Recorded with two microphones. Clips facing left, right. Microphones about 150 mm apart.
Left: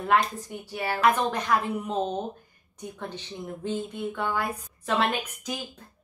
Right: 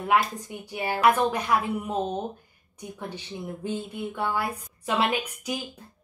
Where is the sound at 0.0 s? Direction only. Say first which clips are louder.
Even; 10° right (ahead or behind).